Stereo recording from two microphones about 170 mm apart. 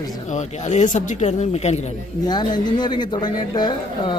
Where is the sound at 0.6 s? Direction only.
45° left (ahead or behind).